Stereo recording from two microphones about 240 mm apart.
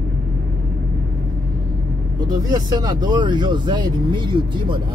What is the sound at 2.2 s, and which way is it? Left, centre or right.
Speech, centre.